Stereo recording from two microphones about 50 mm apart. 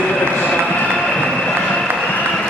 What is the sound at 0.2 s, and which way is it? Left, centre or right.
Run, left.